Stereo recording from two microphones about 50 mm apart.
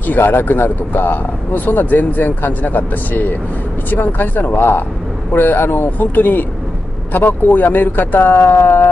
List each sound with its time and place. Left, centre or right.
0.2 s speech: left
5.9 s speech: left